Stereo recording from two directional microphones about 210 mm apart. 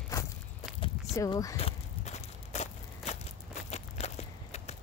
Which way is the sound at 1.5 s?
30° left (ahead or behind).